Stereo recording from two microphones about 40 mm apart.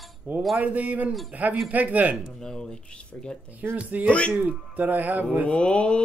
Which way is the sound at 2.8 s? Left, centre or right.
Left.